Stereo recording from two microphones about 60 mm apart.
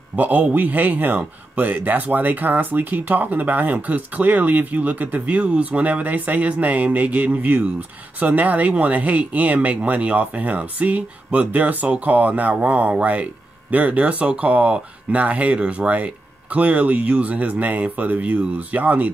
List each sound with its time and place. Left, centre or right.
0.1 s a man's voice: right